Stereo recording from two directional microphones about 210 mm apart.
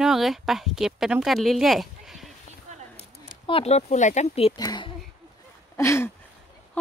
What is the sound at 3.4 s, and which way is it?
Speech, 30° left (ahead or behind).